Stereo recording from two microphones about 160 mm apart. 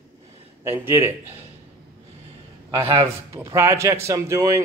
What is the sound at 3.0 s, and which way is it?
A man's voice, 15° right (ahead or behind).